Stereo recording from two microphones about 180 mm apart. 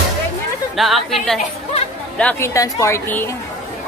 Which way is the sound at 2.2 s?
10° left (ahead or behind).